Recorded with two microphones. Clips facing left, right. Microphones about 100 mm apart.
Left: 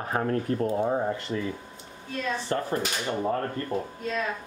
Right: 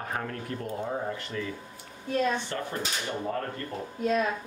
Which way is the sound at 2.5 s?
35° left (ahead or behind).